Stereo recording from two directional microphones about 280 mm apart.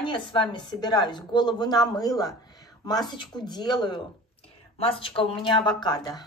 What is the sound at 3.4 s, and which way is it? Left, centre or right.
A woman's voice, centre.